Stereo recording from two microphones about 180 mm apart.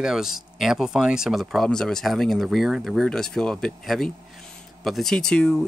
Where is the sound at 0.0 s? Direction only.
5° right (ahead or behind).